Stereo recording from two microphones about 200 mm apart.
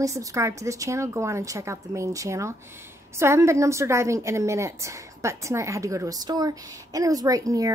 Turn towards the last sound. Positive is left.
turn(degrees=-15)  # may be behind; listen again after turning